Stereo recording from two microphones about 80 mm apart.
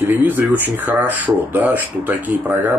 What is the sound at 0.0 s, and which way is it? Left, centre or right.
Speech, right.